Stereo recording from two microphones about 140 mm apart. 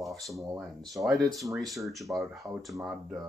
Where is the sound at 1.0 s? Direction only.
15° right (ahead or behind).